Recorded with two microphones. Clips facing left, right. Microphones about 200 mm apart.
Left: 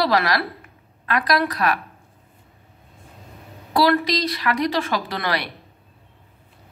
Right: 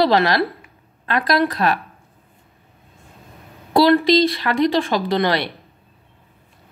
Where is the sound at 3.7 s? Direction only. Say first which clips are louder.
Right 6 dB; 25° right (ahead or behind).